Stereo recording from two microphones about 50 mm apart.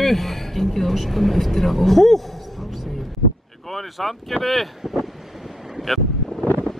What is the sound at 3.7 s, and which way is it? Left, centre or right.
Speech, centre.